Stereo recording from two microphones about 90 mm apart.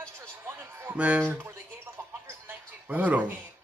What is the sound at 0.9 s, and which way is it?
Speech, 15° right (ahead or behind).